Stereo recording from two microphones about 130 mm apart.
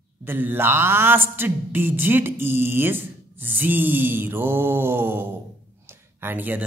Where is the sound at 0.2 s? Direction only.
15° right (ahead or behind).